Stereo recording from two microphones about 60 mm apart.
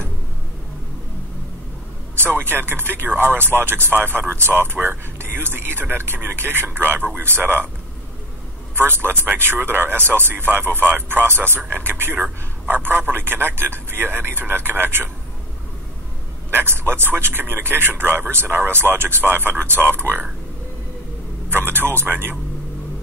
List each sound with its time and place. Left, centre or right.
2.1 s speech: right
8.7 s speech: right
16.4 s speech: right
21.5 s speech: right